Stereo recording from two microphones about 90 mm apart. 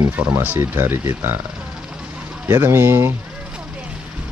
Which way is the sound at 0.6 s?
30° right (ahead or behind).